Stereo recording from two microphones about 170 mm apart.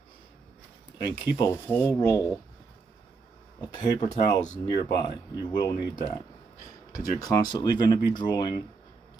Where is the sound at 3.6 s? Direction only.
25° left (ahead or behind).